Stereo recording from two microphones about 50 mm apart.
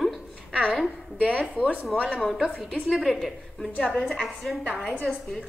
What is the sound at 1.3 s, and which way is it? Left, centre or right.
Speech, left.